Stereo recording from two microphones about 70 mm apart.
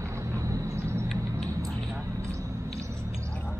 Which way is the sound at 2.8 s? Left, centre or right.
Right.